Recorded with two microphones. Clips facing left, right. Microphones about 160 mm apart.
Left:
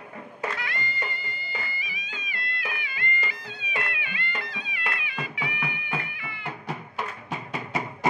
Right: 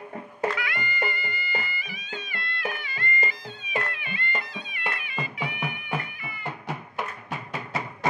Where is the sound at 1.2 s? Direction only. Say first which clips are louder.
Right 4 dB; 55° right (ahead or behind).